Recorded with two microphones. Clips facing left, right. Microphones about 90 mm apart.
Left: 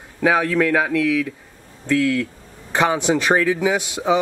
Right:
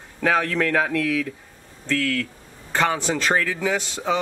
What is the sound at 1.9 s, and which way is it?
Speech, 15° left (ahead or behind).